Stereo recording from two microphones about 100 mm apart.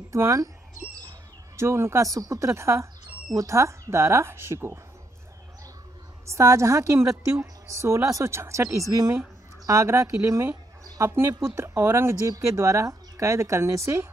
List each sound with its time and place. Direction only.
0.1 s a woman's voice: 30° right (ahead or behind)
1.6 s speech: 25° right (ahead or behind)
6.2 s a woman's voice: 30° right (ahead or behind)